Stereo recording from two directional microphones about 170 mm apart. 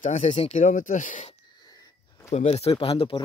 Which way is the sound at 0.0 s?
45° left (ahead or behind).